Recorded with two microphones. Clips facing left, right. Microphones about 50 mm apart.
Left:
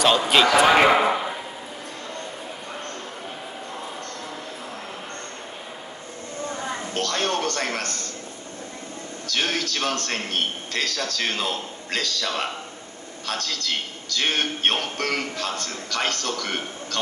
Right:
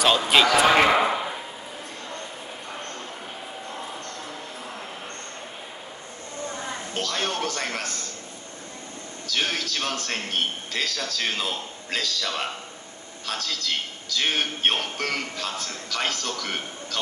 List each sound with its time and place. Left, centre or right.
0.3 s a sound: centre
6.9 s a man's voice: centre
9.3 s a man's voice: centre